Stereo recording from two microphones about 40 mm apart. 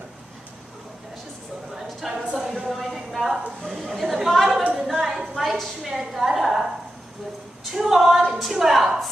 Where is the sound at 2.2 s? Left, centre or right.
Right.